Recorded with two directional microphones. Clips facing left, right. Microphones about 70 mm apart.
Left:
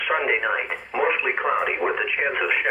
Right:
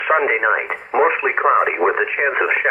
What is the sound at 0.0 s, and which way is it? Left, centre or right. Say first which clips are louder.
Speech: right 6 dB; right.